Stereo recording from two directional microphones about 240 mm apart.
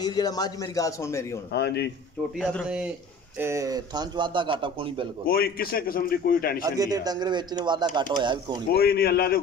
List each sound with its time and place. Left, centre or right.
0.0 s a man's voice: centre
1.5 s speech: left
2.3 s a man's voice: centre; by 5.0 s right
5.2 s a man's voice: left
6.6 s speech: centre
8.6 s a man's voice: left